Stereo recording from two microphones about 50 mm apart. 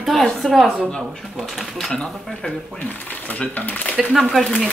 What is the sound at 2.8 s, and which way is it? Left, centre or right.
Speech, left.